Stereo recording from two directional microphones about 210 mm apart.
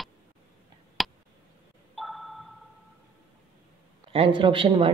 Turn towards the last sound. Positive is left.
turn(degrees=-25)  # may be behind; listen again after turning